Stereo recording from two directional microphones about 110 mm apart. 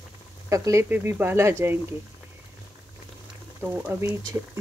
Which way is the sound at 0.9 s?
20° right (ahead or behind).